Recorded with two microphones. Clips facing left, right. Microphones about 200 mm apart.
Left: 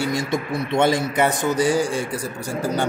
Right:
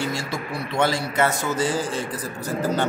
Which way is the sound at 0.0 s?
20° left (ahead or behind).